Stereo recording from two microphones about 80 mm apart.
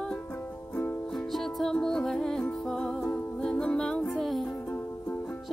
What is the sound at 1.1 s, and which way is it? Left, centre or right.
Music, centre.